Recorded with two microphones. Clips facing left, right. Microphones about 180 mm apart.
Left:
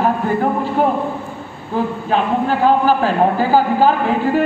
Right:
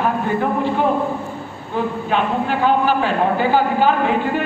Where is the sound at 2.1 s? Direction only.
40° left (ahead or behind).